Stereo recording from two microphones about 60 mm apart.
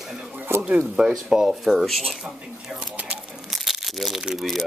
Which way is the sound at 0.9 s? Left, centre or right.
Centre.